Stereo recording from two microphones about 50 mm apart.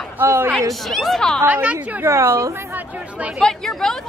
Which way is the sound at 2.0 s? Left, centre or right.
Right.